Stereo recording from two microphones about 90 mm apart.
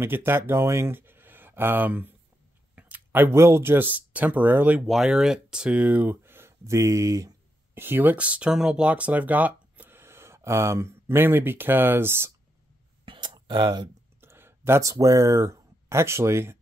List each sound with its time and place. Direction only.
0.0 s speech: 25° right (ahead or behind)
4.8 s speech: 5° right (ahead or behind); by 7.3 s 35° right (ahead or behind)
7.7 s speech: 25° right (ahead or behind)
13.0 s a sound: 65° right (ahead or behind)
14.2 s speech: 25° right (ahead or behind)